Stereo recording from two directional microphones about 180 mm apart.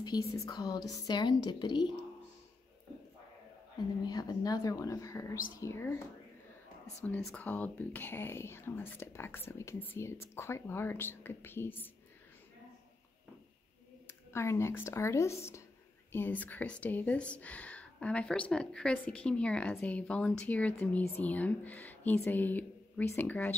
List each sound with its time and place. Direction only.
0.0 s a woman's voice: 25° left (ahead or behind)
4.0 s a woman's voice: 20° left (ahead or behind)
7.1 s speech: 5° left (ahead or behind)
14.0 s speech: 15° left (ahead or behind)